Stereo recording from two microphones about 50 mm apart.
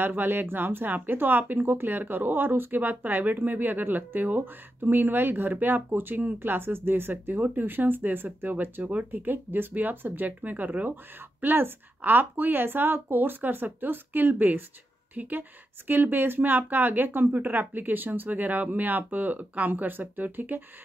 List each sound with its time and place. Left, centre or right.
0.0 s speech: right